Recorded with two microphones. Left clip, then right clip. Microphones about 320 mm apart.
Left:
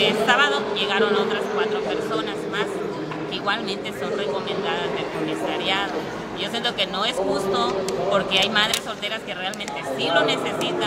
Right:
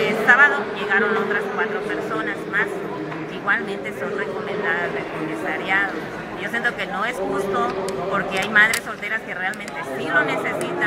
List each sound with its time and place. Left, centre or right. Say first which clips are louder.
0.0 s speech: right 4 dB; centre
6.6 s speech: even; centre
8.1 s speech: left 1 dB; centre
10.1 s speech: right 2 dB; centre